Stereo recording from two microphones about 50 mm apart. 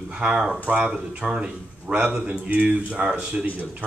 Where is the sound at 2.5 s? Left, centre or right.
Right.